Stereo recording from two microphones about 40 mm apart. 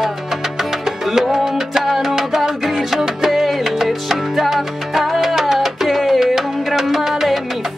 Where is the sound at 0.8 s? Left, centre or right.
Centre.